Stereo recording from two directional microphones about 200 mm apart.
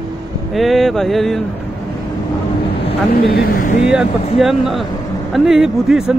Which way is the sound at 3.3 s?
50° left (ahead or behind).